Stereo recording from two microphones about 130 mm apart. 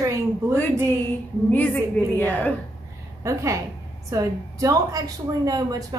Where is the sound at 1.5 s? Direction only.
15° left (ahead or behind).